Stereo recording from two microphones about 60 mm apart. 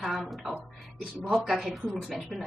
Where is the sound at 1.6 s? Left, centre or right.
Centre.